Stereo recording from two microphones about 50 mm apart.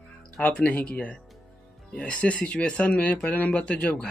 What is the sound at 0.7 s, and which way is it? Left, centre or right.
Speech, left.